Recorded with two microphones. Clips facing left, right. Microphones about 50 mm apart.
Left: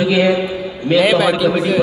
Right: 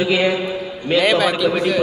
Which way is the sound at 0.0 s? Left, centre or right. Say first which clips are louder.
Left 3 dB; right.